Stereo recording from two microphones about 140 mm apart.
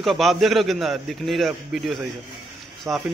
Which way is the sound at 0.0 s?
Centre (ahead or behind).